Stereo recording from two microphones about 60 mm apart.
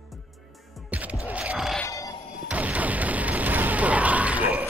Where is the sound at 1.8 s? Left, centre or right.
Left.